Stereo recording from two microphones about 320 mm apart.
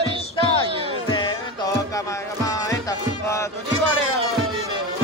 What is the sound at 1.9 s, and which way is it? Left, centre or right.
Music, centre.